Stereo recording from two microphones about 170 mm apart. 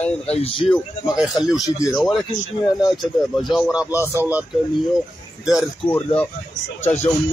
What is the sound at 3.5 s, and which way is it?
Speech, 5° right (ahead or behind).